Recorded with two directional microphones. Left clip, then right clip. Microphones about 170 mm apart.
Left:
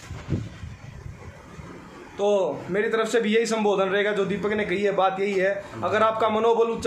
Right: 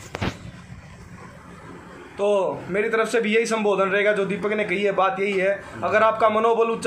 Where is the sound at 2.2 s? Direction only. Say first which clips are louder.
Right 1 dB; 5° left (ahead or behind).